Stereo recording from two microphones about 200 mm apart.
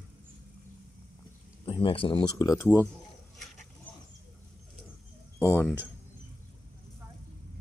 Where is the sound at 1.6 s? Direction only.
25° left (ahead or behind).